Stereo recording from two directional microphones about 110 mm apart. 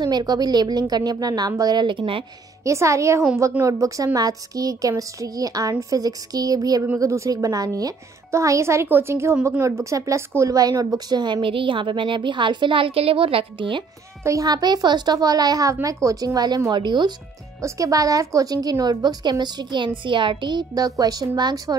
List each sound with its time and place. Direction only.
0.0 s a woman's voice: 40° right (ahead or behind)
2.6 s a woman's voice: 25° right (ahead or behind); by 13.8 s 50° right (ahead or behind)
14.2 s a woman's voice: 35° right (ahead or behind)
17.6 s a woman's voice: 30° right (ahead or behind)